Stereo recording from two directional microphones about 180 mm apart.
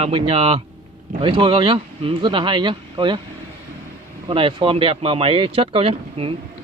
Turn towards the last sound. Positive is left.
turn(degrees=-35)  # may be behind; listen again after turning